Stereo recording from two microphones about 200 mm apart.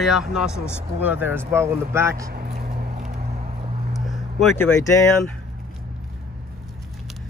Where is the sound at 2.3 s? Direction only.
50° right (ahead or behind).